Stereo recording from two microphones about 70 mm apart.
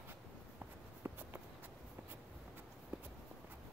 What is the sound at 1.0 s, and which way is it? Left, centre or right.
Walk, right.